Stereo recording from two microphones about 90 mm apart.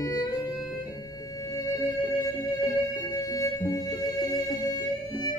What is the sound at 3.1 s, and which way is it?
Music, 40° left (ahead or behind).